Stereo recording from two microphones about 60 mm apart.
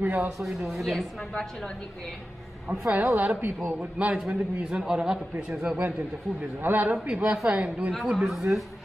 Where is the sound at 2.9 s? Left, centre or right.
Right.